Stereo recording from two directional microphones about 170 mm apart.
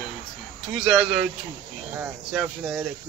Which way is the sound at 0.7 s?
5° right (ahead or behind).